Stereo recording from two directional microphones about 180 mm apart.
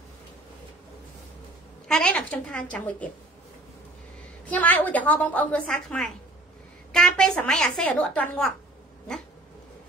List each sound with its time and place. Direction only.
1.9 s a woman's voice: 5° left (ahead or behind)
4.5 s a woman's voice: 10° left (ahead or behind)